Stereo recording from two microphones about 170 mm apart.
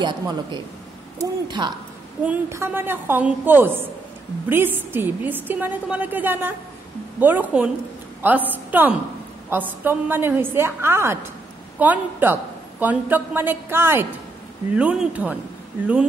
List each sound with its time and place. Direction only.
0.0 s a man's voice: 25° right (ahead or behind)
2.2 s a woman's voice: 15° right (ahead or behind)